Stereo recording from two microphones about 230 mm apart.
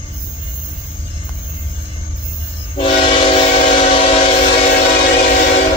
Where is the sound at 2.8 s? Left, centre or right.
Left.